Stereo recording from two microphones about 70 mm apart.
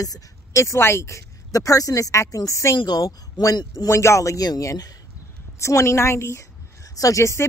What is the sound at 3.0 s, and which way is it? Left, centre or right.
Speech, left.